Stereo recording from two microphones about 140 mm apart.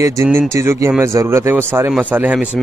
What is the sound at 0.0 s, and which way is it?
Speech, 20° right (ahead or behind).